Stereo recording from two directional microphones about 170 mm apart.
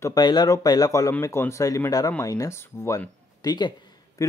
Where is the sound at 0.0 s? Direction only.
25° left (ahead or behind).